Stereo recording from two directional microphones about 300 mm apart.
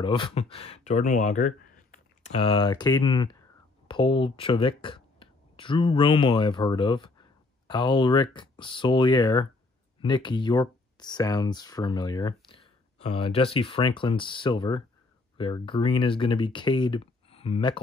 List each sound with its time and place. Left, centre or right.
0.0 s speech: centre